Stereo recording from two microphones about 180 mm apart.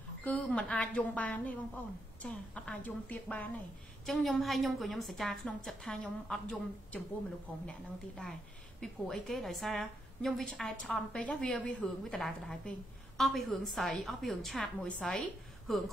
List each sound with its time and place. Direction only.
0.2 s a woman's voice: 5° left (ahead or behind)
8.8 s a woman's voice: centre (ahead or behind)